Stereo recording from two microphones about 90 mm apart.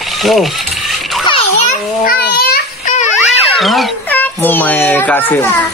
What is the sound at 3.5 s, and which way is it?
Speech, centre (ahead or behind).